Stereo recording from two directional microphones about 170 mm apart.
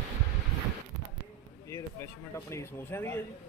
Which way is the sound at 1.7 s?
15° left (ahead or behind).